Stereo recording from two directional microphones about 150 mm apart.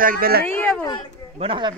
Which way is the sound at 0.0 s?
75° right (ahead or behind).